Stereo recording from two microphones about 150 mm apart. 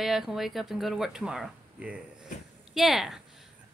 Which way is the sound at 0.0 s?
Centre (ahead or behind).